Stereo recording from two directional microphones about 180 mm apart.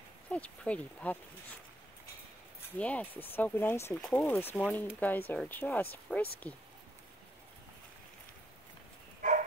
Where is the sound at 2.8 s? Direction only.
10° left (ahead or behind).